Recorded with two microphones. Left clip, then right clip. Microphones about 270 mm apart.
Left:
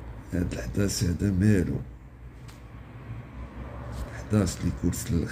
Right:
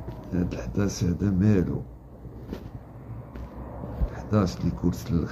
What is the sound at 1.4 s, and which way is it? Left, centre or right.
Speech, right.